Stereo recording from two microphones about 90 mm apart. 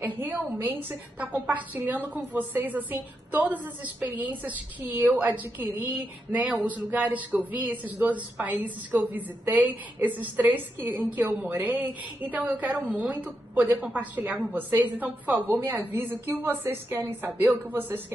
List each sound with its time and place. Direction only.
0.0 s speech: 20° right (ahead or behind)